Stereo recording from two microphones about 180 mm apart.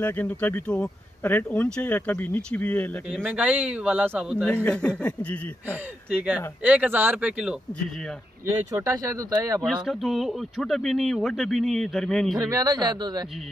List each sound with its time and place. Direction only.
0.0 s speech: 10° left (ahead or behind)
3.3 s speech: 10° right (ahead or behind)
4.6 s speech: 5° left (ahead or behind)
5.7 s speech: 10° right (ahead or behind)
8.5 s speech: 20° right (ahead or behind)
9.7 s speech: centre (ahead or behind)
12.4 s speech: 20° right (ahead or behind)